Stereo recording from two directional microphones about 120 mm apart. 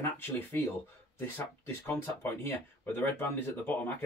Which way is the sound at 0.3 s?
15° left (ahead or behind).